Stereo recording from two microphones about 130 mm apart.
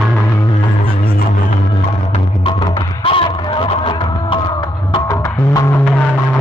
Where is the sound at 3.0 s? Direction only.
45° left (ahead or behind).